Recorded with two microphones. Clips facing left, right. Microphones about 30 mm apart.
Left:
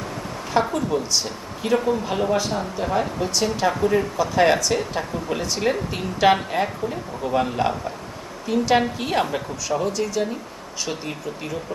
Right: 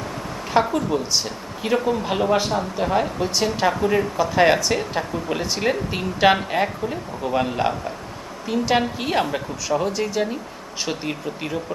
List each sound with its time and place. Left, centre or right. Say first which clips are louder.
0.5 s a woman's voice: right 2 dB; centre
9.9 s a woman's voice: right 1 dB; centre